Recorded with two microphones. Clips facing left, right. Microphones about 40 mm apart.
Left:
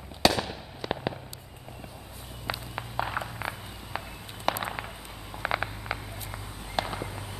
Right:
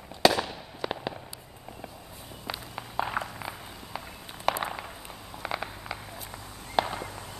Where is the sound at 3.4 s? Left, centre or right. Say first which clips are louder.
Left 3 dB; centre.